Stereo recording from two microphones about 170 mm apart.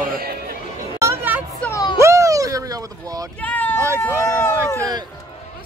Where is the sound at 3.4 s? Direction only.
10° left (ahead or behind).